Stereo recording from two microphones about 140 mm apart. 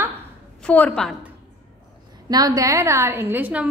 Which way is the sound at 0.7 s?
10° left (ahead or behind).